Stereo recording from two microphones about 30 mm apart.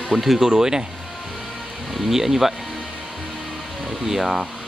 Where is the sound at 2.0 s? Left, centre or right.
Centre.